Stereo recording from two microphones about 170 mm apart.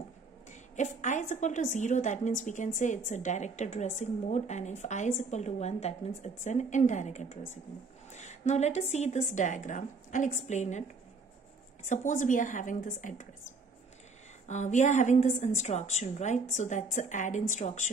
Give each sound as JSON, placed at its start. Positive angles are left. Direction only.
{"t": 0.5, "sound": "a woman's voice", "side_deg": 45}
{"t": 11.8, "sound": "a woman's voice", "side_deg": 45}
{"t": 14.5, "sound": "a woman's voice", "side_deg": 45}